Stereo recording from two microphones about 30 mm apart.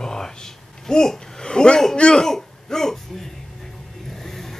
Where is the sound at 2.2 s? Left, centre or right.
Centre.